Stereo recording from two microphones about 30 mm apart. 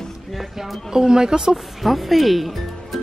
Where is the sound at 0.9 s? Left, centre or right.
Right.